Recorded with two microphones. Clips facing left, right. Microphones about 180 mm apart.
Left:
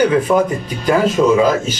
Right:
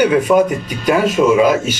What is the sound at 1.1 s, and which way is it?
Speech, 10° right (ahead or behind).